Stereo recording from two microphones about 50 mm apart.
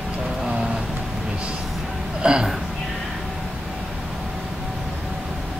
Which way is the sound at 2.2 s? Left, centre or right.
Right.